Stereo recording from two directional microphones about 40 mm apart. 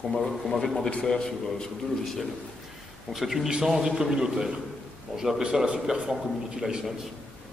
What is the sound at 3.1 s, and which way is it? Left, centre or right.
A man's voice, centre.